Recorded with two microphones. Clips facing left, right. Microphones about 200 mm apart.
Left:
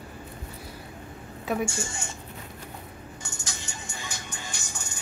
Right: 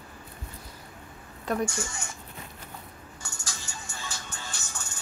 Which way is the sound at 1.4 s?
5° left (ahead or behind).